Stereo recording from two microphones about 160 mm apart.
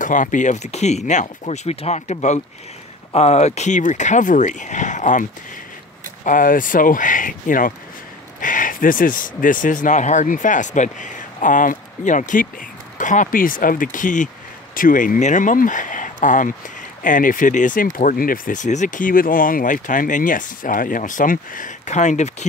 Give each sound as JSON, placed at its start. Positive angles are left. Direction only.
{"t": 0.0, "sound": "speech", "side_deg": 55}
{"t": 6.2, "sound": "speech", "side_deg": 55}